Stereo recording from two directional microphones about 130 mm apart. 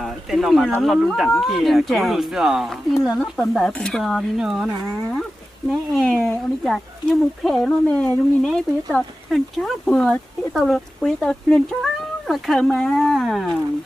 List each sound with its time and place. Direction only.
0.0 s speech: centre (ahead or behind)
5.7 s speech: centre (ahead or behind)